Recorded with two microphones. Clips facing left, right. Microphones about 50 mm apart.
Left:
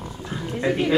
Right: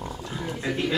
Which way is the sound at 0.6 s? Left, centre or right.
Left.